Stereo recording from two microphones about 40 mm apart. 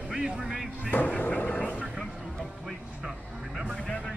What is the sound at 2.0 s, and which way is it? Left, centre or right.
Music, centre.